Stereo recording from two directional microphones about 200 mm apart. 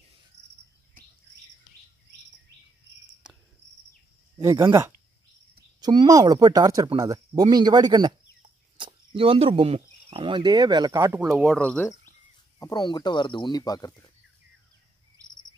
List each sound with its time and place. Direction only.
4.4 s speech: 15° right (ahead or behind)
11.1 s speech: 5° right (ahead or behind)
12.5 s speech: 20° left (ahead or behind)